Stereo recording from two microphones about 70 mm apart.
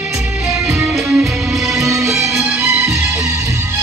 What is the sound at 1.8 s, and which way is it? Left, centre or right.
Music, right.